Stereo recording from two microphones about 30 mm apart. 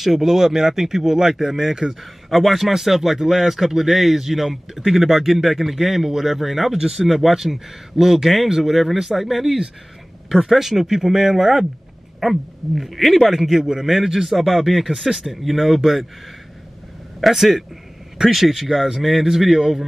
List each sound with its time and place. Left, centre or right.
0.0 s speech: centre
2.2 s speech: centre
2.7 s speech: centre
7.1 s speech: centre
7.3 s speech: centre
8.8 s speech: centre
14.3 s speech: centre
17.2 s speech: centre